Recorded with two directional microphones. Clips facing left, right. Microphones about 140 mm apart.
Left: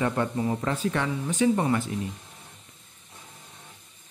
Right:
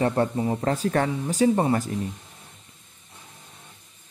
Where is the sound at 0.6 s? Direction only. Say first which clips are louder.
Right 4 dB; 40° right (ahead or behind).